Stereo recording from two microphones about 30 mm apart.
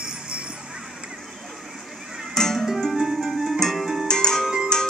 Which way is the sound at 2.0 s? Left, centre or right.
Centre.